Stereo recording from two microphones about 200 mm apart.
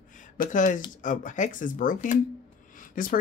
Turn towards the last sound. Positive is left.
turn(degrees=40)  # may be behind; listen again after turning